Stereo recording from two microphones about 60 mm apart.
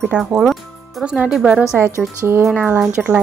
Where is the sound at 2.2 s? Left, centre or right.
Right.